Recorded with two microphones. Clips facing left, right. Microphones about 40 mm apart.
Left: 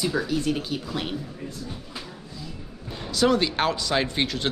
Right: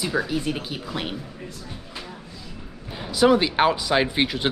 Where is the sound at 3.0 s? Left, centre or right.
Centre.